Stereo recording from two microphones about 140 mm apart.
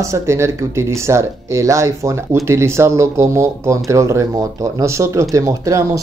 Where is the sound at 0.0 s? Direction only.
20° right (ahead or behind).